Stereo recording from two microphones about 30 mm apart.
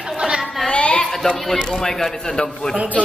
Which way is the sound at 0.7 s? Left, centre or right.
Left.